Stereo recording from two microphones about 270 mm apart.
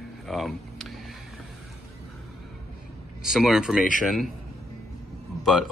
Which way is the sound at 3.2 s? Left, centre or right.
Centre.